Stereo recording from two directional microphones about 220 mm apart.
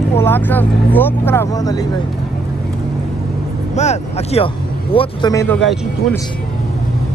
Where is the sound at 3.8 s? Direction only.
30° left (ahead or behind); by 5.6 s 10° left (ahead or behind).